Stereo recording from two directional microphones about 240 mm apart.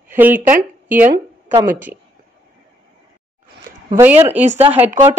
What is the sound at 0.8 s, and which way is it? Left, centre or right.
Speech, centre.